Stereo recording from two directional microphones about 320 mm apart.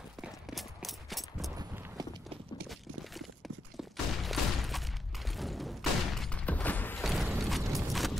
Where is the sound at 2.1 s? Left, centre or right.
Centre.